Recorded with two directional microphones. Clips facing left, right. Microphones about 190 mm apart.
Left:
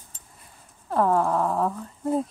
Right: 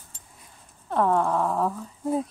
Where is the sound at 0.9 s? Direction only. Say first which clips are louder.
Left 1 dB; centre (ahead or behind).